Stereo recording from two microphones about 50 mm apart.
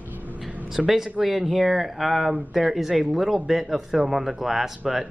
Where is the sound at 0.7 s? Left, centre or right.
Centre.